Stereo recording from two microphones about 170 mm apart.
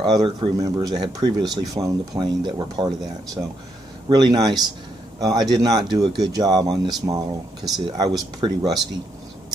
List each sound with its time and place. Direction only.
0.0 s speech: 30° right (ahead or behind)